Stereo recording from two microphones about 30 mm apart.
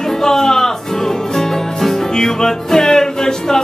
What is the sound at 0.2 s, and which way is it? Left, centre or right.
Music, centre.